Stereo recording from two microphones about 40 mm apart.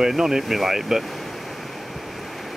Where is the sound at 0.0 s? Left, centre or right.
Centre.